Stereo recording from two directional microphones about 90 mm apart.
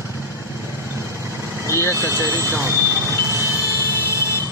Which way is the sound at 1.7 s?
35° right (ahead or behind).